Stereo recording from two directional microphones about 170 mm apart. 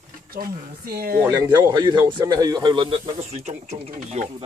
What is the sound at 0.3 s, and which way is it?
Speech, 60° right (ahead or behind).